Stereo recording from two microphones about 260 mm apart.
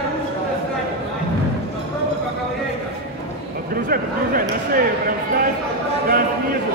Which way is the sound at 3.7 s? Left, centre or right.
Right.